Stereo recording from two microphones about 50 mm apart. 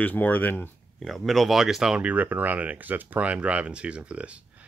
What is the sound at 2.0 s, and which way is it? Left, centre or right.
Speech, right.